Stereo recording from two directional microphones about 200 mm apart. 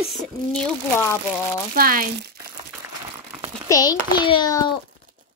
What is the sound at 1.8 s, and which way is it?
Speech, 45° right (ahead or behind).